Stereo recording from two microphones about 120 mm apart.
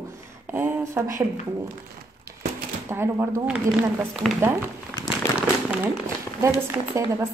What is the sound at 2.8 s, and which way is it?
A woman's voice, 20° right (ahead or behind).